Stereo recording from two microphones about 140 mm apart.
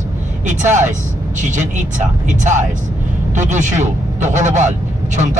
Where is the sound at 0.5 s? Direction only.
60° right (ahead or behind).